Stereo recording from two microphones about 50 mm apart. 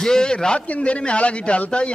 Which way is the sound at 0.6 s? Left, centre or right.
Left.